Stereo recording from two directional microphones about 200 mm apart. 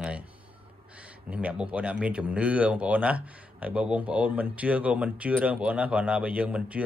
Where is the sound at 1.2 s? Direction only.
5° right (ahead or behind).